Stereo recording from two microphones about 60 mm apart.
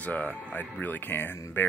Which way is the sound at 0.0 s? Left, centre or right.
Left.